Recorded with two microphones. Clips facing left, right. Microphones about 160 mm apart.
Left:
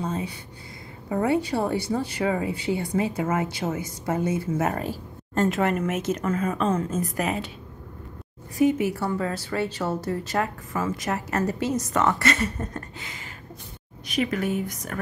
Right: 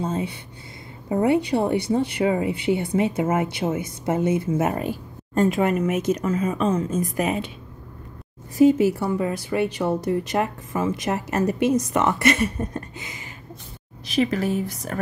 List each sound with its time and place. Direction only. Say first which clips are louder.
0.0 s speech: right 3 dB; 25° right (ahead or behind); by 6.8 s 10° right (ahead or behind)
8.5 s speech: right 5 dB; 30° right (ahead or behind)
8.9 s speech: right 3 dB; 15° right (ahead or behind)
14.0 s speech: right 3 dB; 30° right (ahead or behind)